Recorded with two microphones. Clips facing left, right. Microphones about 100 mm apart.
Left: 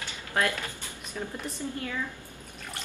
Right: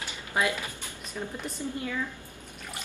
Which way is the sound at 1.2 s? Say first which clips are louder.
Even; centre (ahead or behind).